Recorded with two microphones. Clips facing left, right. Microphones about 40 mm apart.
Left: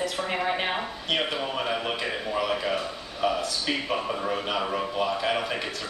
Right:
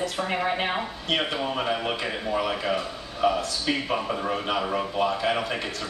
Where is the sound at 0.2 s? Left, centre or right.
Centre.